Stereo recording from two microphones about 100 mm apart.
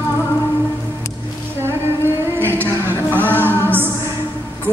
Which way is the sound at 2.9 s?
20° left (ahead or behind).